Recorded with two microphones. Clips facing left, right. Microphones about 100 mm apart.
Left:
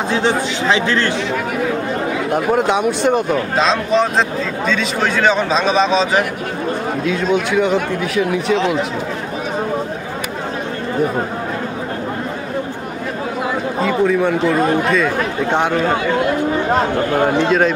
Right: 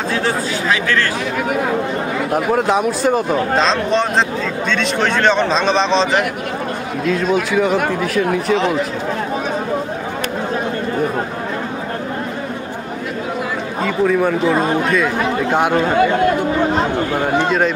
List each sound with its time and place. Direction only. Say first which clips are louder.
0.1 s speech: left 2 dB; 20° left (ahead or behind)
2.3 s speech: even; centre (ahead or behind)
7.5 s speech: even; centre (ahead or behind)
13.8 s speech: even; centre (ahead or behind)
17.5 s speech: left 2 dB; centre (ahead or behind)